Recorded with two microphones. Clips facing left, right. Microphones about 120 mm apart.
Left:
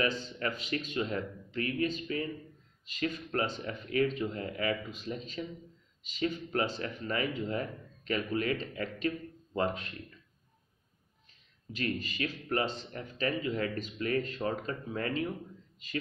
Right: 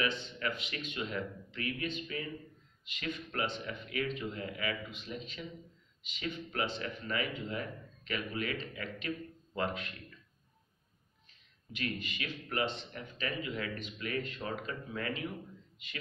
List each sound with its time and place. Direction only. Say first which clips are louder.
0.0 s speech: left 3 dB; 40° left (ahead or behind)
11.7 s speech: left 4 dB; 40° left (ahead or behind)